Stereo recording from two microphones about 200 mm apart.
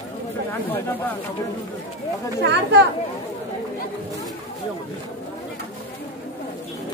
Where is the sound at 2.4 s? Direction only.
55° right (ahead or behind).